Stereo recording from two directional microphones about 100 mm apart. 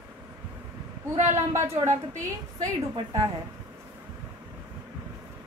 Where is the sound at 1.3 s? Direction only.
25° right (ahead or behind).